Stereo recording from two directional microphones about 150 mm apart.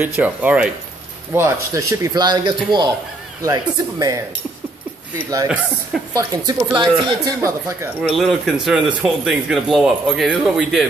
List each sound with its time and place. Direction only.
0.0 s speech: 10° right (ahead or behind)
6.1 s speech: 25° right (ahead or behind)
7.3 s speech: 15° right (ahead or behind)
8.2 s speech: centre (ahead or behind)